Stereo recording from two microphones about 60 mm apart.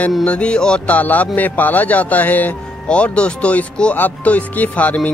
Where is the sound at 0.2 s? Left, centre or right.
Centre.